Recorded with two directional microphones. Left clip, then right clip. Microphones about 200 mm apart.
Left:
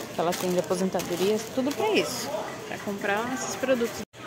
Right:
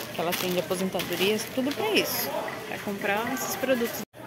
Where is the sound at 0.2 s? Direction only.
15° left (ahead or behind).